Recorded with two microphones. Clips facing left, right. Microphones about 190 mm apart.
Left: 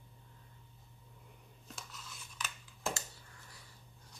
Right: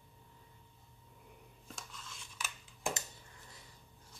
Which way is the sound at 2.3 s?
10° right (ahead or behind).